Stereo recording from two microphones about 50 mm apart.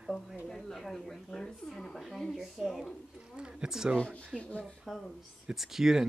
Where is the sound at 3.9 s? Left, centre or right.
Centre.